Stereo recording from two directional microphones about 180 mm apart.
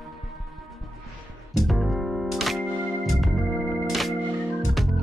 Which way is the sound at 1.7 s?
Centre (ahead or behind).